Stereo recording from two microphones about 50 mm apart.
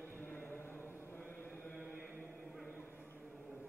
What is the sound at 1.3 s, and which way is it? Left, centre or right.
Chant, left.